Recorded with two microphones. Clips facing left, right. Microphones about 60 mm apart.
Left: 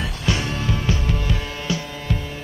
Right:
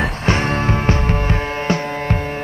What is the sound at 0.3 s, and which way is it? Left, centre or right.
Music, right.